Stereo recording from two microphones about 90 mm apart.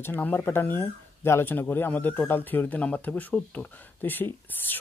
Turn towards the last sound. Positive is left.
turn(degrees=20)  # may be behind; listen again after turning